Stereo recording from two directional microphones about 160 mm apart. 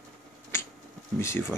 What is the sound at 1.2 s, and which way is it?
Speech, 15° left (ahead or behind).